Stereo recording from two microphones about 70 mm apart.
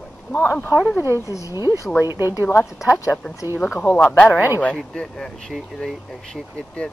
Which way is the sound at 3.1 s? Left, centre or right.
Left.